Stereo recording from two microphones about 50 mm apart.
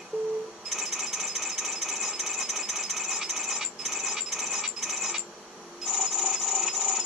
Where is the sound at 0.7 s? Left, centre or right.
Centre.